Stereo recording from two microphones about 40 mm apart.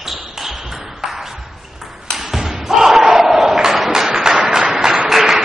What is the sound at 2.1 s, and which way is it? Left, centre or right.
Slam, centre.